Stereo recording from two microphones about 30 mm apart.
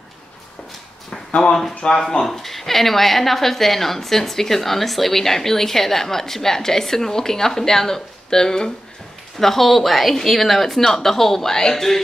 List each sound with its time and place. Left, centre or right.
1.3 s speech: left
2.2 s a woman's voice: centre
9.4 s a woman's voice: centre